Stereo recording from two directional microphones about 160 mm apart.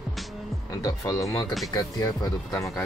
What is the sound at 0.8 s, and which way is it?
Speech, 20° left (ahead or behind).